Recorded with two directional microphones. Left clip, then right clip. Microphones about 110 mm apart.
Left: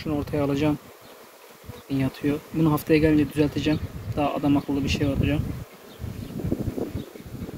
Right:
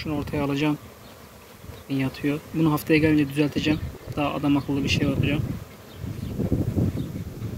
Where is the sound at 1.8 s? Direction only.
45° left (ahead or behind).